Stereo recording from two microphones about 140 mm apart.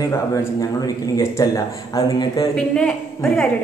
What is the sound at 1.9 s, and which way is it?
Speech, 25° left (ahead or behind).